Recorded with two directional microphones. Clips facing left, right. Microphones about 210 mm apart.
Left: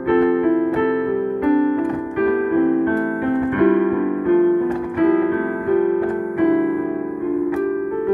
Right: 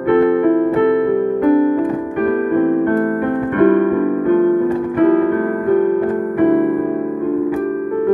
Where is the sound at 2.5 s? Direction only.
50° right (ahead or behind).